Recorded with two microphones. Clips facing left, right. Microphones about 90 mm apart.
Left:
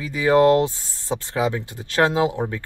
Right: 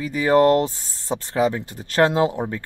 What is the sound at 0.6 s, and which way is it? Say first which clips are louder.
Speech: left 2 dB; 15° left (ahead or behind).